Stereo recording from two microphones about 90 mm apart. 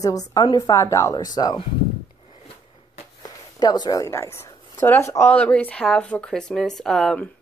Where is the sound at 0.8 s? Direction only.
35° left (ahead or behind).